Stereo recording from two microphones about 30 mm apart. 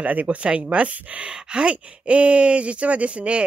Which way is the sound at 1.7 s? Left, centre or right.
Right.